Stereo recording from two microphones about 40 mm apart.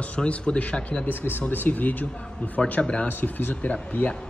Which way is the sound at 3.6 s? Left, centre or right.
Left.